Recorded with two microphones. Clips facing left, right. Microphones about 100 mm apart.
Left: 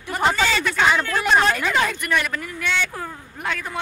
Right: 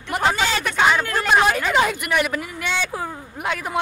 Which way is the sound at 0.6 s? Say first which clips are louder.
Right 1 dB; 15° right (ahead or behind).